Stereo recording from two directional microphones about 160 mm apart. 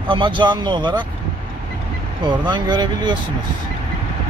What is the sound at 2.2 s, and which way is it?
Speech, 30° right (ahead or behind).